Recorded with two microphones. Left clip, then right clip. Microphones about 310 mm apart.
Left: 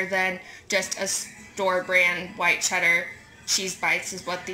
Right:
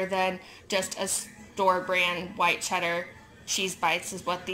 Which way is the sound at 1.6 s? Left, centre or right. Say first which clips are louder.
Left 3 dB; centre.